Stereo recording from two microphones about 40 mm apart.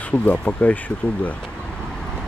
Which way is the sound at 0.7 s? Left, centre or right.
Left.